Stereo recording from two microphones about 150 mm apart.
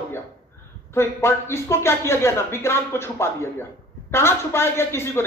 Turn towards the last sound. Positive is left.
turn(degrees=15)  # may be behind; listen again after turning